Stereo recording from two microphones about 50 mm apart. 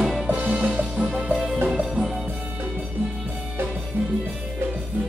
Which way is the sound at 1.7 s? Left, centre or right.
Centre.